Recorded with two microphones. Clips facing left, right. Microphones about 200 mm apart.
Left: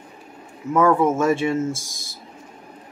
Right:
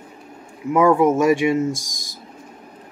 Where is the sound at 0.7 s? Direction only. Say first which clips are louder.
Right 2 dB; 15° right (ahead or behind).